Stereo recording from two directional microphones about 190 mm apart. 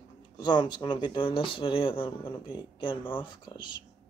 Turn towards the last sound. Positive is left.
turn(degrees=25)  # may be behind; listen again after turning